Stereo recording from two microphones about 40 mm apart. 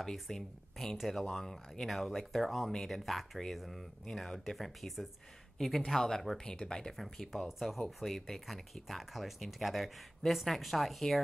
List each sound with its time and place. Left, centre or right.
0.0 s speech: centre